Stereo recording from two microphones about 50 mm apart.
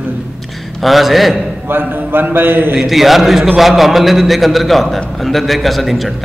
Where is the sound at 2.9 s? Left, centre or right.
Centre.